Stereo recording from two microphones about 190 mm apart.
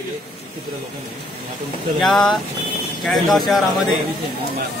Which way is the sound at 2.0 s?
Centre (ahead or behind).